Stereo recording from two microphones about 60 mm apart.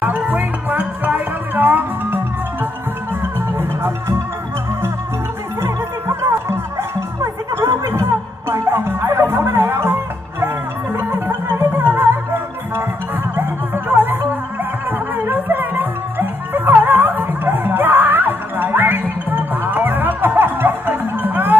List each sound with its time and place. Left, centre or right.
0.0 s music: right
5.6 s music: right
8.5 s music: right
13.4 s music: right